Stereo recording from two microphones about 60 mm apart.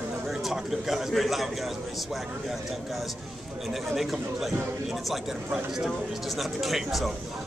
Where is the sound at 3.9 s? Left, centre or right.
Centre.